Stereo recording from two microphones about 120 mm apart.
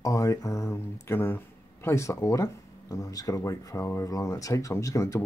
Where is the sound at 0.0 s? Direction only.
30° left (ahead or behind).